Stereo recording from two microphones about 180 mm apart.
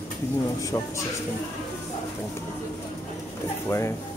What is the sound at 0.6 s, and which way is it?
Speech, 20° left (ahead or behind).